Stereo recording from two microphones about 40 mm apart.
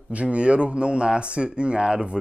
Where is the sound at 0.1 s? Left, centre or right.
Right.